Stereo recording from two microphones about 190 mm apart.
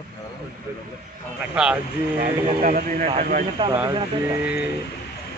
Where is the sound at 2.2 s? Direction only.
40° right (ahead or behind).